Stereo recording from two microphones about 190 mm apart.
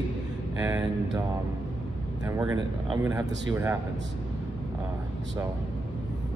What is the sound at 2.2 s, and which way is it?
Speech, 15° right (ahead or behind).